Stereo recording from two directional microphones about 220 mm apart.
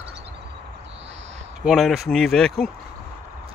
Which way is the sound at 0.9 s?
55° right (ahead or behind).